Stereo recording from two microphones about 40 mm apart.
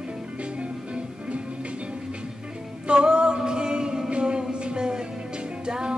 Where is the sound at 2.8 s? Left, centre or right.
Right.